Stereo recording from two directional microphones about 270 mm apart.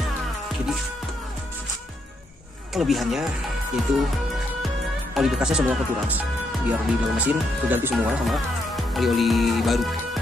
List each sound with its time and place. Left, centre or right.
2.7 s speech: centre
5.1 s speech: centre